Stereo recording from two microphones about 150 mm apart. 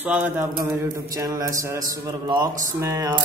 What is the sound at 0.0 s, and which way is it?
Mantra, 10° right (ahead or behind).